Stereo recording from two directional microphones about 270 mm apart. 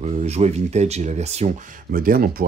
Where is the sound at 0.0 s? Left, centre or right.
Right.